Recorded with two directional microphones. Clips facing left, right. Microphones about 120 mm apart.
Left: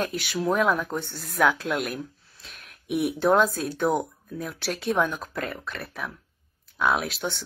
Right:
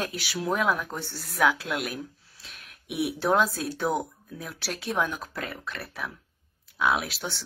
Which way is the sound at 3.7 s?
50° left (ahead or behind).